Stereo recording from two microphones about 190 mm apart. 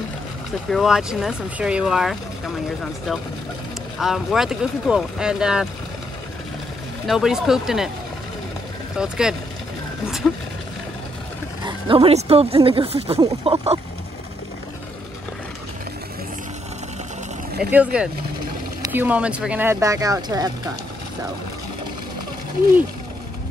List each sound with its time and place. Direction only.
0.7 s speech: centre (ahead or behind)
7.1 s speech: centre (ahead or behind)
8.9 s speech: 5° right (ahead or behind)
11.6 s speech: 30° right (ahead or behind)
17.6 s speech: 5° right (ahead or behind)